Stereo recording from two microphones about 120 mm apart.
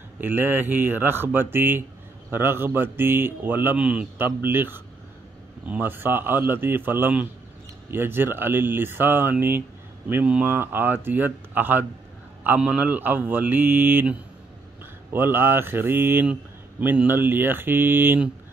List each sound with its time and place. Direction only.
0.2 s speech: 15° right (ahead or behind)
15.1 s speech: 15° right (ahead or behind)